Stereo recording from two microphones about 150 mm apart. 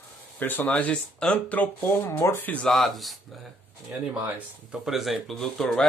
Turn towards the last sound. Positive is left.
turn(degrees=5)  # may be behind; listen again after turning